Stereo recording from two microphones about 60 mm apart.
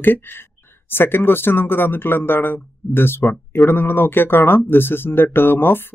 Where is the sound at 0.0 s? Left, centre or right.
Left.